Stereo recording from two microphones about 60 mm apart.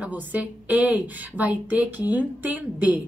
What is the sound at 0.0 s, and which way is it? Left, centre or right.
A woman's voice, right.